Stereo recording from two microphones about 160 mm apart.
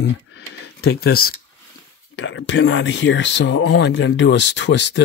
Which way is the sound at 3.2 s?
90° left.